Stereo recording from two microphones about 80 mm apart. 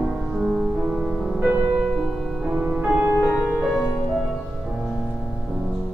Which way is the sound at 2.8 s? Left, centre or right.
Right.